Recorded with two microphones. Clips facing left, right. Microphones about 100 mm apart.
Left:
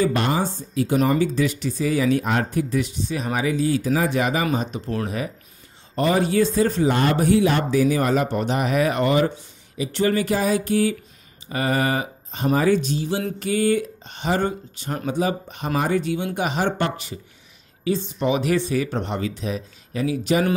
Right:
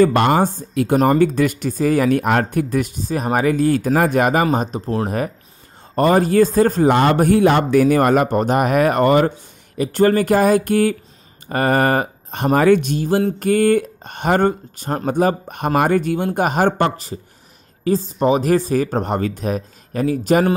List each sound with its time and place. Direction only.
0.0 s speech: 60° right (ahead or behind)
4.5 s speech: 35° right (ahead or behind)
6.9 s speech: 65° right (ahead or behind); by 20.4 s 45° right (ahead or behind)